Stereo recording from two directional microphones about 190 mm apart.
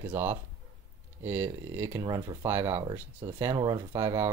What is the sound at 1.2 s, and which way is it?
Speech, 10° right (ahead or behind).